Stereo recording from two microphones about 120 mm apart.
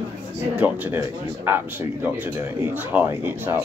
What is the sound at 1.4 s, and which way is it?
A man's voice, 15° right (ahead or behind).